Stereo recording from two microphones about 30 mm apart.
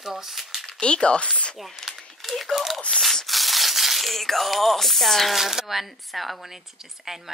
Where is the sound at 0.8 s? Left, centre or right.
Left.